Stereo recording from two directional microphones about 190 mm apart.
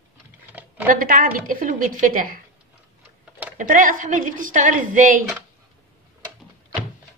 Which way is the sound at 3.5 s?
45° right (ahead or behind).